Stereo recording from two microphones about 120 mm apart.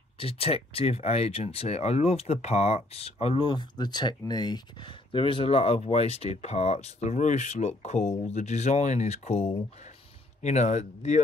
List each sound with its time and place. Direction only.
0.2 s speech: 55° left (ahead or behind); by 11.2 s 70° left (ahead or behind)